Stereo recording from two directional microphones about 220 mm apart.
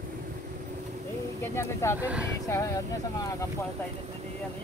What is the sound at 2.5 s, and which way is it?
Speech, 15° left (ahead or behind).